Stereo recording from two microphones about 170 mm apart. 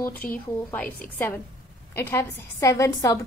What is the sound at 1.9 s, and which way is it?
A woman's voice, 15° left (ahead or behind).